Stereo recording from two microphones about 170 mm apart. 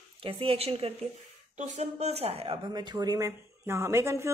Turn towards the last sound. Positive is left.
turn(degrees=-15)  # may be behind; listen again after turning